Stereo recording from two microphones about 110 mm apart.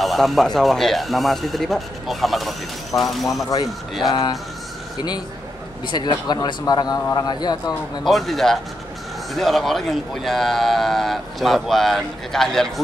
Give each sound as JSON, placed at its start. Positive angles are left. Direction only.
{"t": 0.0, "sound": "speech", "side_deg": 0}
{"t": 4.1, "sound": "speech", "side_deg": 40}
{"t": 5.9, "sound": "speech", "side_deg": 40}
{"t": 8.0, "sound": "speech", "side_deg": 0}